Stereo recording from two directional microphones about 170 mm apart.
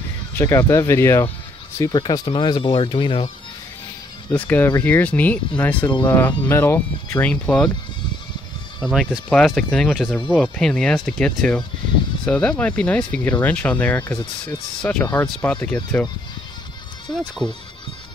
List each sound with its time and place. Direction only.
0.4 s speech: 15° left (ahead or behind)
1.8 s speech: 25° left (ahead or behind)
4.3 s speech: 10° left (ahead or behind)
5.9 s speech: 25° left (ahead or behind)
6.1 s speech: 10° left (ahead or behind)
8.8 s speech: centre (ahead or behind)
14.1 s speech: 25° left (ahead or behind)
14.8 s speech: 5° left (ahead or behind)